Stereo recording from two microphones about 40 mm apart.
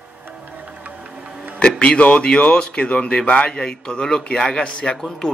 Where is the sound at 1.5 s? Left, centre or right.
Left.